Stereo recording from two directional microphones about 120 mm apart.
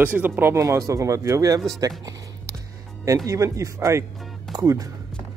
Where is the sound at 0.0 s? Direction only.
15° right (ahead or behind).